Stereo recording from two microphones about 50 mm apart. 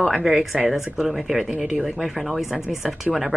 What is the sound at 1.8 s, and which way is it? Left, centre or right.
Speech, centre.